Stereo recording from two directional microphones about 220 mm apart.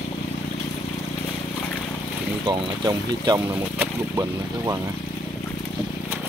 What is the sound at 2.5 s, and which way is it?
Speech, 20° right (ahead or behind).